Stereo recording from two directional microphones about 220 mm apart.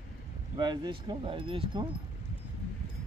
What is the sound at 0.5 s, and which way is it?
Speech, 20° right (ahead or behind).